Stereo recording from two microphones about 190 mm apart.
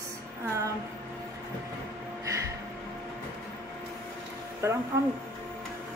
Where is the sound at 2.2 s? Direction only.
15° right (ahead or behind).